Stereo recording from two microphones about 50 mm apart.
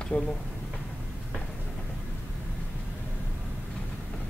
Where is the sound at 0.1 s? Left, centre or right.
Left.